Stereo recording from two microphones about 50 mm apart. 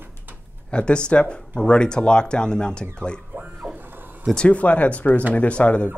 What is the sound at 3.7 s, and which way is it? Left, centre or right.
Vehicle, right.